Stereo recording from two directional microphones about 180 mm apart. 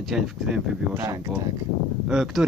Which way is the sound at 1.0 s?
15° right (ahead or behind).